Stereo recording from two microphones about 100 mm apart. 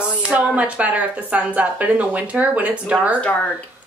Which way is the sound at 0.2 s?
10° right (ahead or behind).